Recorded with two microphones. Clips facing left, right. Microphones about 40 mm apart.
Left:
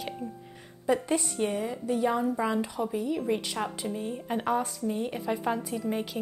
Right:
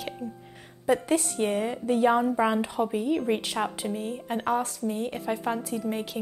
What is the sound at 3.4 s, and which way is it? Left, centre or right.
Speech, centre.